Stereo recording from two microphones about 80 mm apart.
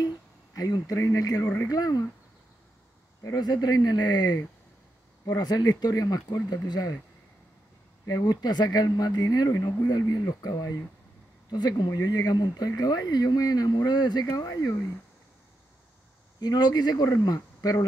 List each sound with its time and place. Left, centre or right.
0.6 s speech: left
1.4 s speech: left
1.7 s speech: left
3.3 s speech: left
8.1 s speech: left
11.5 s speech: left
16.3 s speech: left